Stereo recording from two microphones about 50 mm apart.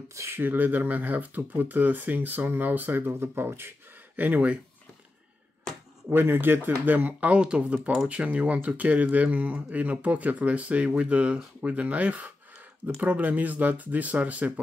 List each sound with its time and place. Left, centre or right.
0.3 s speech: right
4.2 s speech: right
6.0 s speech: right